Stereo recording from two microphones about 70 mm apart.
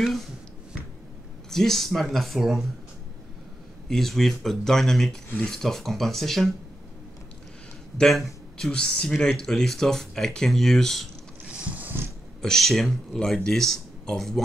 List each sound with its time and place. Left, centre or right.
1.5 s speech: centre
3.9 s speech: centre
8.0 s speech: centre
11.4 s a sound: centre
12.4 s speech: centre